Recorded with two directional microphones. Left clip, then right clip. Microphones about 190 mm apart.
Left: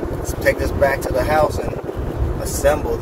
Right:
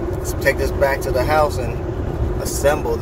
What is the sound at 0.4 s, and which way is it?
Speech, 15° right (ahead or behind).